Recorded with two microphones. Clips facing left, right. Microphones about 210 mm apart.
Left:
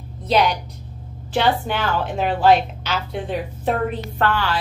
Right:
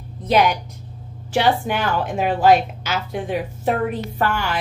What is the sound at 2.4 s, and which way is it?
Speech, 45° right (ahead or behind).